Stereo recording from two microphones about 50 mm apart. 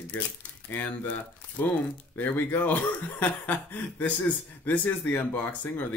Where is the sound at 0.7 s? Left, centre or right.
Left.